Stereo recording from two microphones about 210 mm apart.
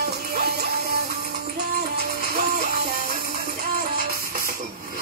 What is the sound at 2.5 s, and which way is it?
Music, 45° right (ahead or behind).